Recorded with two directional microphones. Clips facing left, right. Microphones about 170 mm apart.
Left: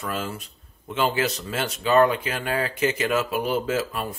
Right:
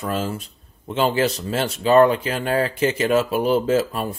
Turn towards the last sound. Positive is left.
turn(degrees=-35)  # may be behind; listen again after turning